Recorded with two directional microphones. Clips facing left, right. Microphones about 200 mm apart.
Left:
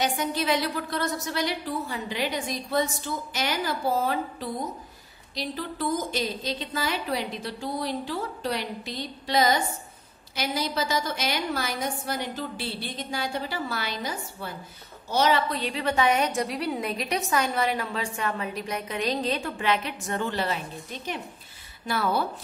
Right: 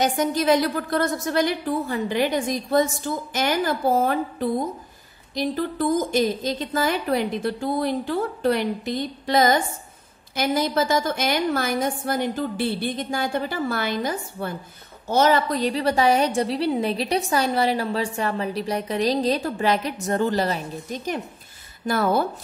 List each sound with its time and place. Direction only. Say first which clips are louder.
0.0 s a woman's voice: right 6 dB; 45° right (ahead or behind)